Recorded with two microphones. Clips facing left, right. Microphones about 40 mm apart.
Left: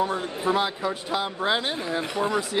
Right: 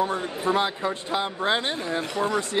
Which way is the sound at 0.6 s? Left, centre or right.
Centre.